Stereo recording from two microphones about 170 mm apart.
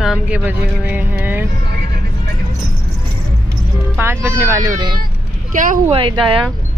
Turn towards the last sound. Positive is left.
turn(degrees=-30)  # may be behind; listen again after turning